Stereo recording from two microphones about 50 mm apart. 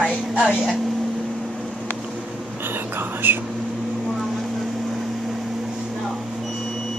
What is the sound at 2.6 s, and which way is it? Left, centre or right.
Whispering, right.